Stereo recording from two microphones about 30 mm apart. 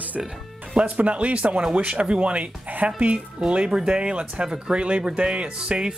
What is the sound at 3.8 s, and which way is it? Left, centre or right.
Speech, right.